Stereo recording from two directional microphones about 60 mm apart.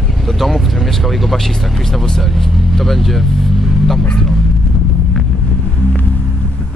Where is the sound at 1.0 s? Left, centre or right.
Centre.